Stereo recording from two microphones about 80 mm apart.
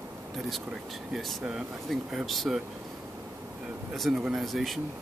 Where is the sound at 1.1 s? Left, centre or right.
Centre.